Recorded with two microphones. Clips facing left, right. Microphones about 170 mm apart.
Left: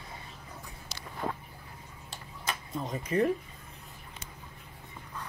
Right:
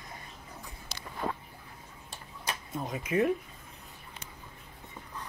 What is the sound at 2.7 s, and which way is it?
Speech, 5° right (ahead or behind).